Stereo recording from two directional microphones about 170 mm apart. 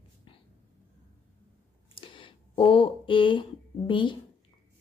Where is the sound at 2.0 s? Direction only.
30° left (ahead or behind).